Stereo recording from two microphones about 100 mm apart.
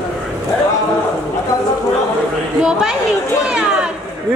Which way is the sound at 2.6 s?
5° right (ahead or behind).